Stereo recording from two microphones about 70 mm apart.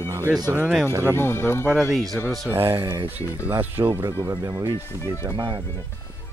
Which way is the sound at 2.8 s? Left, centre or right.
Right.